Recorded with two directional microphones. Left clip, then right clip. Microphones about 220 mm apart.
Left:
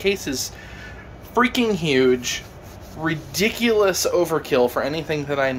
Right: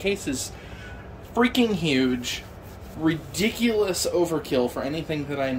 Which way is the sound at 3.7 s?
30° left (ahead or behind).